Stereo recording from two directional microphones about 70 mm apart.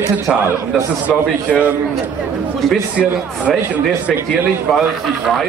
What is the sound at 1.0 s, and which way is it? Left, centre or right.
Speech, right.